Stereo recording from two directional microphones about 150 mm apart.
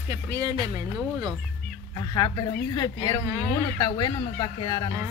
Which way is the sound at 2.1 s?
25° left (ahead or behind).